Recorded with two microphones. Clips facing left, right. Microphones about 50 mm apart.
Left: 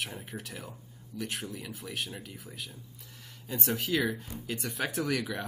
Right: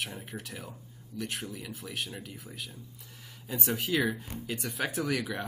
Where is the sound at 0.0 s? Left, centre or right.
Centre.